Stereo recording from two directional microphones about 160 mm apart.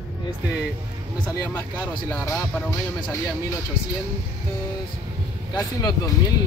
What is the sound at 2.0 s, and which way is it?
Speech, 20° left (ahead or behind).